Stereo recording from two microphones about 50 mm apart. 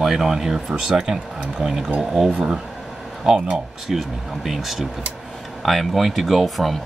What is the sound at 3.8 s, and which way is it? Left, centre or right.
Speech, centre.